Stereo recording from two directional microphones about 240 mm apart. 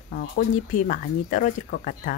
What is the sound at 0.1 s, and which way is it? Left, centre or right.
Speech, left.